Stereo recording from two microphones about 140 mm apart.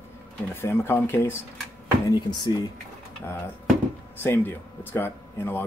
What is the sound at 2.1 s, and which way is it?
Speech, 30° left (ahead or behind).